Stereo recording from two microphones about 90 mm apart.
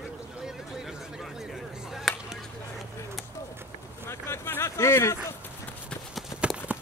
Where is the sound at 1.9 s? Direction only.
5° right (ahead or behind).